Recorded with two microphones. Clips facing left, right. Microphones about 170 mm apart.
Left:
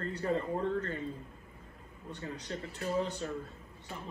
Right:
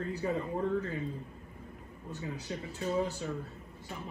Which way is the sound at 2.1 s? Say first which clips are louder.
Right 1 dB; 5° right (ahead or behind).